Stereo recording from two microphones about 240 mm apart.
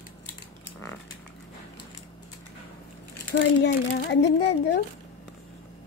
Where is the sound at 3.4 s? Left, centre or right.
Left.